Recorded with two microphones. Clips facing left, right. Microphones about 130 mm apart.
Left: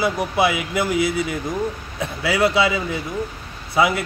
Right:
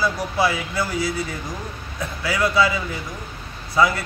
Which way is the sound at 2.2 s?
25° left (ahead or behind).